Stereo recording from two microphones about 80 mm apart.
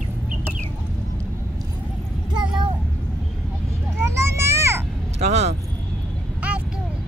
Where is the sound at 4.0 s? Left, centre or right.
Right.